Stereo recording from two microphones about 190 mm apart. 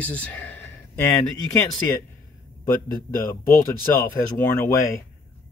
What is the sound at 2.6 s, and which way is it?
Speech, 50° left (ahead or behind).